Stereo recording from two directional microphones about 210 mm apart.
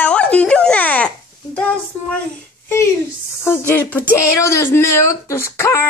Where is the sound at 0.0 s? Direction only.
5° left (ahead or behind).